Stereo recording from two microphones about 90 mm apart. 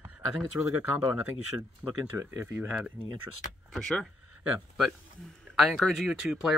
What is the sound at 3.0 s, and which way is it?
Speech, 20° left (ahead or behind).